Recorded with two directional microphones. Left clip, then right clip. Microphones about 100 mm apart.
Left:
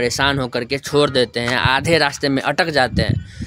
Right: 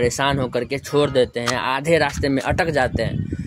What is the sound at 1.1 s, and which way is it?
Speech, 65° left (ahead or behind).